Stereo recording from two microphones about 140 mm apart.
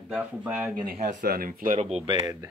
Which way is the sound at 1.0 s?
80° right.